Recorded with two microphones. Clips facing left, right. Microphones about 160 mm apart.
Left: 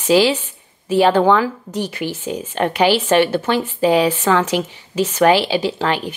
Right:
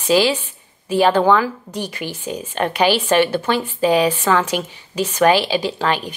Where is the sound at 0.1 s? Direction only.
15° left (ahead or behind).